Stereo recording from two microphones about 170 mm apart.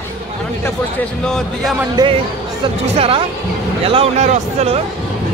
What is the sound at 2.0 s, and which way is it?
Speech, 25° right (ahead or behind).